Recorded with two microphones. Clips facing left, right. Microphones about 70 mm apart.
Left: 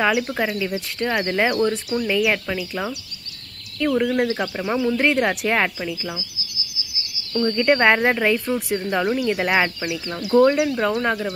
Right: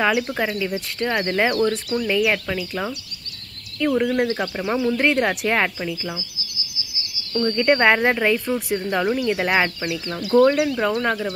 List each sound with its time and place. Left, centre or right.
0.0 s speech: centre
7.3 s speech: centre